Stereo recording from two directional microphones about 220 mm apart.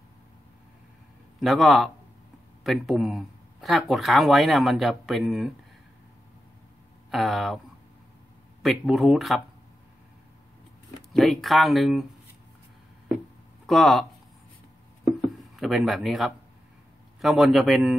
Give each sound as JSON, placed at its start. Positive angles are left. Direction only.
{"t": 1.4, "sound": "speech", "side_deg": 0}
{"t": 7.1, "sound": "speech", "side_deg": 0}
{"t": 8.6, "sound": "speech", "side_deg": 0}
{"t": 11.1, "sound": "speech", "side_deg": 0}
{"t": 13.7, "sound": "speech", "side_deg": 0}
{"t": 15.5, "sound": "speech", "side_deg": 0}